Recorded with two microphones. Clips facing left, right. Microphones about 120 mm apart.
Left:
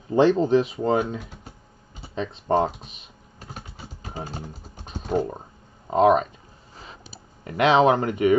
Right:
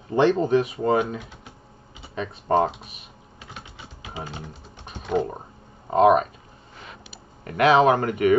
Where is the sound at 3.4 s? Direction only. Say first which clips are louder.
Left 2 dB; 45° left (ahead or behind).